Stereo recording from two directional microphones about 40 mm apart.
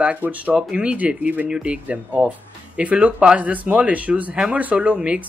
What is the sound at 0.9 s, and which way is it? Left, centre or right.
Speech, right.